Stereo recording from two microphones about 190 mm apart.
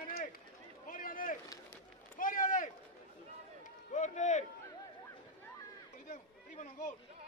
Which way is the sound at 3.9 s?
40° left (ahead or behind).